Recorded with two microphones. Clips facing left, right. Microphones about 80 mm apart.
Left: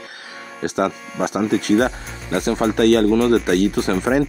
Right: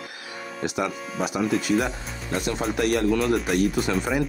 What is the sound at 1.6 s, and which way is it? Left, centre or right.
Speech, left.